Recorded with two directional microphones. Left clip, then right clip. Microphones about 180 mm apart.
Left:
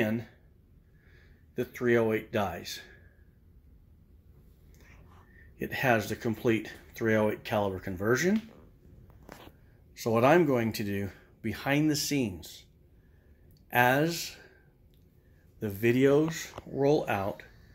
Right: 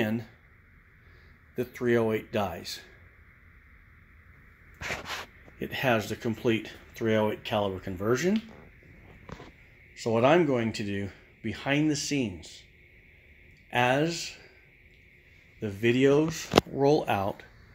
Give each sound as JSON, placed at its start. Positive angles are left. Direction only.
{"t": 0.0, "sound": "speech", "side_deg": -5}
{"t": 1.5, "sound": "speech", "side_deg": -5}
{"t": 5.6, "sound": "speech", "side_deg": 0}
{"t": 9.9, "sound": "speech", "side_deg": 0}
{"t": 13.7, "sound": "speech", "side_deg": 0}
{"t": 15.6, "sound": "speech", "side_deg": -5}